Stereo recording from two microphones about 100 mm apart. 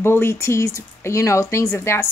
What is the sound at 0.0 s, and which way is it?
Speech, 25° left (ahead or behind).